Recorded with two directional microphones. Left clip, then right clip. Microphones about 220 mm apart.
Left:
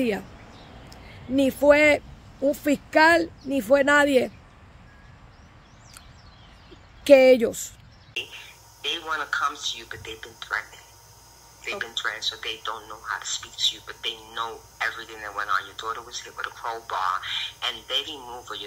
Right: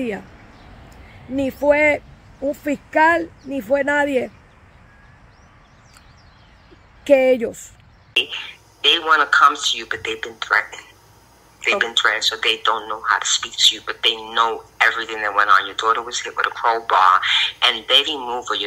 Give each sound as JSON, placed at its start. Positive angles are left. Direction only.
{"t": 1.3, "sound": "speech", "side_deg": 10}
{"t": 7.1, "sound": "speech", "side_deg": 5}
{"t": 8.1, "sound": "speech", "side_deg": -35}